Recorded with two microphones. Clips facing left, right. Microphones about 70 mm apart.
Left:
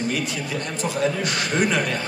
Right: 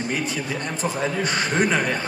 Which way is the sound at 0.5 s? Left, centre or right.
Right.